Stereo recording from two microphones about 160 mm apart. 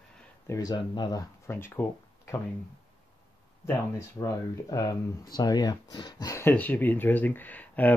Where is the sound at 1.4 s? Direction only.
15° left (ahead or behind).